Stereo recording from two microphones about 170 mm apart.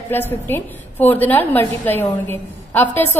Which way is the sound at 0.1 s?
10° left (ahead or behind).